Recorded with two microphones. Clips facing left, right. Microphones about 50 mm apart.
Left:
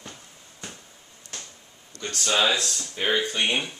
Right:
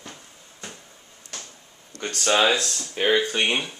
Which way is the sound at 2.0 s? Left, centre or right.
Right.